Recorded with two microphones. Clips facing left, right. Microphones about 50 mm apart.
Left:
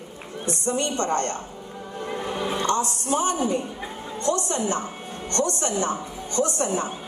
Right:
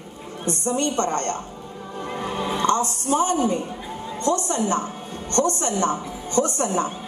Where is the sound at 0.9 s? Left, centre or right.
Right.